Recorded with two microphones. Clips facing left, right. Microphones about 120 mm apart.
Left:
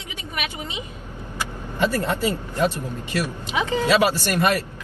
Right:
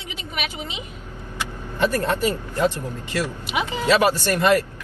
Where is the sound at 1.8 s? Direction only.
15° left (ahead or behind).